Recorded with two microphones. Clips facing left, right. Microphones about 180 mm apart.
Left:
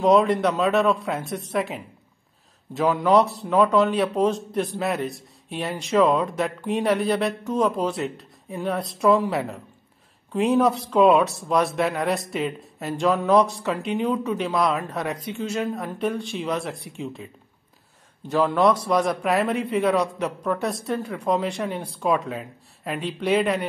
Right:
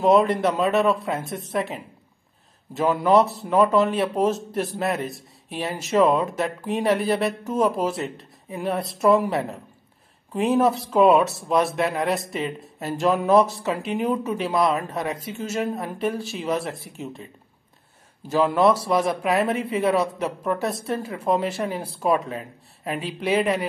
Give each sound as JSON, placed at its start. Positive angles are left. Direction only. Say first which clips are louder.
{"t": 0.0, "sound": "speech", "louder": "even", "side_deg": 0}
{"t": 18.3, "sound": "speech", "louder": "right 1 dB", "side_deg": -5}